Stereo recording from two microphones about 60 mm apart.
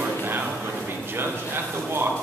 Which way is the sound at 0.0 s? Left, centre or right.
Right.